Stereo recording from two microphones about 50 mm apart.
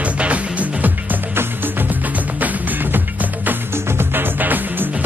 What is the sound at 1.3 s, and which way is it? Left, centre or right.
Music, right.